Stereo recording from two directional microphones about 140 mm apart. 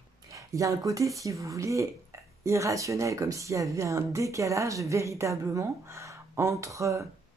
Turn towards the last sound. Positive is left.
turn(degrees=-20)  # may be behind; listen again after turning